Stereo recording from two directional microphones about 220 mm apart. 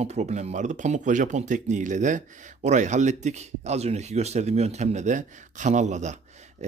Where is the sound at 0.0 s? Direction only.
30° right (ahead or behind).